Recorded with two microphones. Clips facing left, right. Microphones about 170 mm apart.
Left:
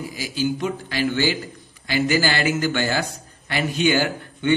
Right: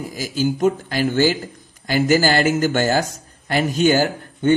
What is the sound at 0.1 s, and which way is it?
A man's voice, 45° right (ahead or behind).